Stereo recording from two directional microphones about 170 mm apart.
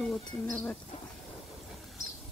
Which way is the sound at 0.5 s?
10° left (ahead or behind).